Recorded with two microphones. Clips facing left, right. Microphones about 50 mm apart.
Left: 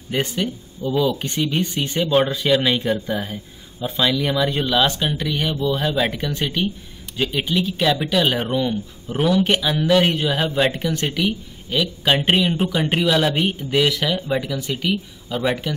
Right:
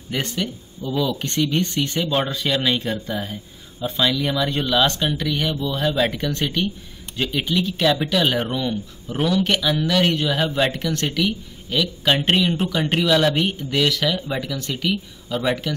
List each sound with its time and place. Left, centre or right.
0.1 s speech: centre